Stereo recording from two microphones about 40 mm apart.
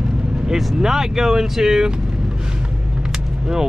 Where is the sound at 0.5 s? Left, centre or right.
Centre.